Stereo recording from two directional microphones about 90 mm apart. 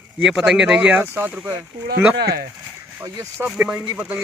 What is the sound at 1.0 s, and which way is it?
Speech, 20° right (ahead or behind).